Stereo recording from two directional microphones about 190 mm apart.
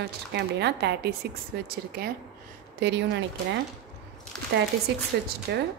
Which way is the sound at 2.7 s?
65° right (ahead or behind).